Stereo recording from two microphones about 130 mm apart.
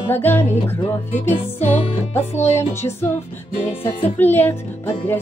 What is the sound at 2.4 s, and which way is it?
Music, 20° left (ahead or behind).